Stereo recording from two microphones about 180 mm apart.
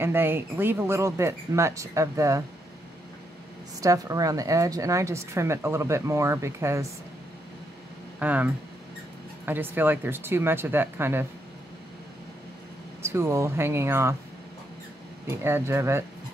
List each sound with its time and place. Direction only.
0.0 s a woman's voice: 10° right (ahead or behind)
3.8 s a woman's voice: 20° right (ahead or behind)
8.2 s speech: 10° right (ahead or behind)
9.5 s a woman's voice: 10° right (ahead or behind)
13.0 s a woman's voice: 15° right (ahead or behind)
15.2 s a woman's voice: 15° right (ahead or behind)